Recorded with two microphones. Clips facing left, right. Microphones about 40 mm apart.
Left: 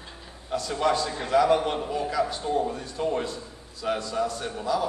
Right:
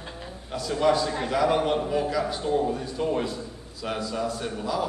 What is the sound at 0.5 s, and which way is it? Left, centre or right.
A man's voice, centre.